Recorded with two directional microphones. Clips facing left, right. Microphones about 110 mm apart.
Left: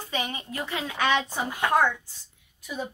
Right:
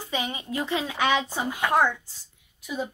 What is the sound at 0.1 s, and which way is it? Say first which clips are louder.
A woman's voice: right 2 dB; 20° right (ahead or behind).